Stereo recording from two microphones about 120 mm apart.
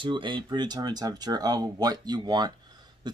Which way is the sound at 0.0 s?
45° right (ahead or behind).